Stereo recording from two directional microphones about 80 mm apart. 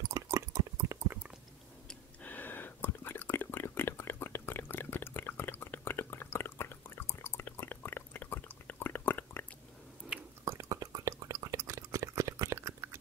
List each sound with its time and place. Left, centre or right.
0.1 s water: right
2.2 s whispering: left
10.4 s drip: right